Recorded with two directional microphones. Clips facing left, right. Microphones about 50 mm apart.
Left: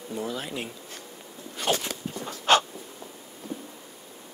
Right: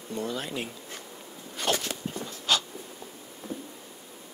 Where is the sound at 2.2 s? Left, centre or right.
Left.